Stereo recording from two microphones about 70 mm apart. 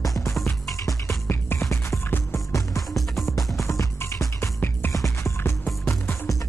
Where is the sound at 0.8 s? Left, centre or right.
Left.